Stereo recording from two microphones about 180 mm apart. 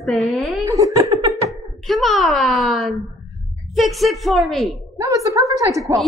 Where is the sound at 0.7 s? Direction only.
20° right (ahead or behind).